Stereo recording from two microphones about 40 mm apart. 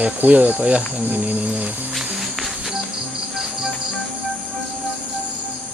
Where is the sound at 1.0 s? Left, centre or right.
Right.